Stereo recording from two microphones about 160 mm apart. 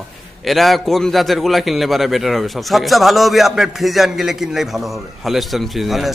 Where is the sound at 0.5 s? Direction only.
Centre (ahead or behind).